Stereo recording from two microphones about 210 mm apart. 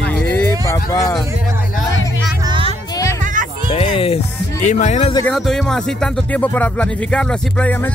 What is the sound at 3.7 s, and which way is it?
Music, 25° left (ahead or behind).